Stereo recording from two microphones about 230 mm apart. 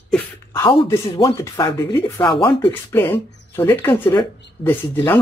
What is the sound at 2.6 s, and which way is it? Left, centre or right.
Speech, centre.